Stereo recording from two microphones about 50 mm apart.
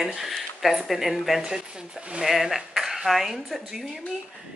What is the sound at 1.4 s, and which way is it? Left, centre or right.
Speech, centre.